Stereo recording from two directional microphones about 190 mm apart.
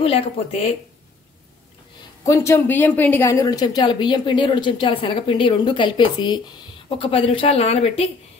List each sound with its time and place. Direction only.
0.0 s speech: 30° left (ahead or behind)
2.2 s a woman's voice: 15° left (ahead or behind); by 8.1 s 35° left (ahead or behind)